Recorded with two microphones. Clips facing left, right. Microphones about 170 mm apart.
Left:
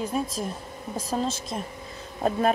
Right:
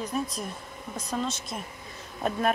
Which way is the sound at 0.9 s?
30° left (ahead or behind).